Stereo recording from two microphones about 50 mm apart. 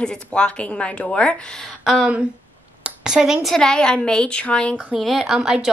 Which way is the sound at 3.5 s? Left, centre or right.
Centre.